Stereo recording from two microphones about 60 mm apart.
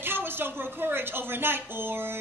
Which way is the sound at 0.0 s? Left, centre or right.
Right.